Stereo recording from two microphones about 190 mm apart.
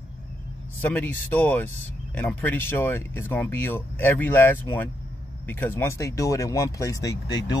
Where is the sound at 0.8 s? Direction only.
10° left (ahead or behind).